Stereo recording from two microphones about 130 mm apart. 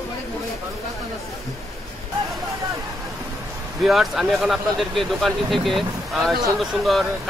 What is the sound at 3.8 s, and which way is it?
Speech, centre (ahead or behind).